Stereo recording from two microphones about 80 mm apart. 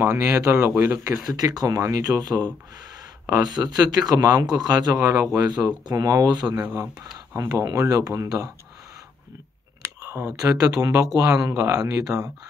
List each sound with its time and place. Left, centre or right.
0.0 s speech: right
1.3 s speech: right
6.7 s speech: right
9.8 s a sound: right
10.5 s speech: right